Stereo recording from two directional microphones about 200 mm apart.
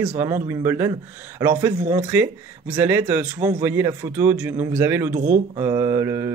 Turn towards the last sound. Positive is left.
turn(degrees=-15)  # may be behind; listen again after turning